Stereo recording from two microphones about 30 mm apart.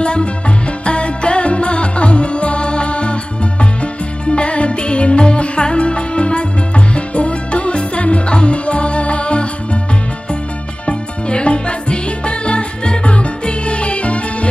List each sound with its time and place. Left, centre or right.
0.0 s music: left
4.3 s music: left
10.9 s music: left